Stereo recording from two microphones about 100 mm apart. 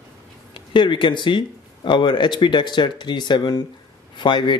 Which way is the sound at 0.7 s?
55° left (ahead or behind).